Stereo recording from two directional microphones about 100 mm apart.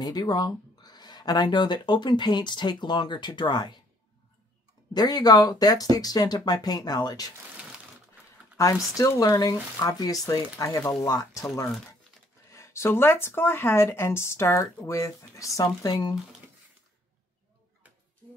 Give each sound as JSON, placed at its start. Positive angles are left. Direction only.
{"t": 0.0, "sound": "speech", "side_deg": 45}
{"t": 4.9, "sound": "speech", "side_deg": 40}
{"t": 8.6, "sound": "speech", "side_deg": 30}